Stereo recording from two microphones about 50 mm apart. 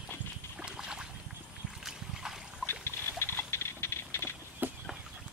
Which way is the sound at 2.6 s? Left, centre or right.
Left.